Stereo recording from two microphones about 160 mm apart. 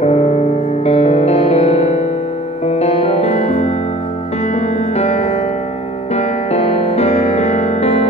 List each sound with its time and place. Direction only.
0.0 s music: 40° left (ahead or behind)